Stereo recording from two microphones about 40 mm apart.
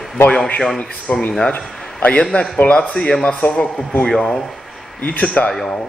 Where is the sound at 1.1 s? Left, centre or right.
Left.